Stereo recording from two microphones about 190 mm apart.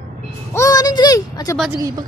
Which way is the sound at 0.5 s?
15° left (ahead or behind).